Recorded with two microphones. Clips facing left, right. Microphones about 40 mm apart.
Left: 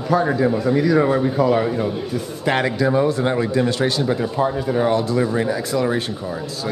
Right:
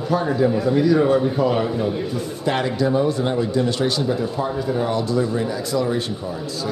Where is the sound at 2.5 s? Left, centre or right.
Left.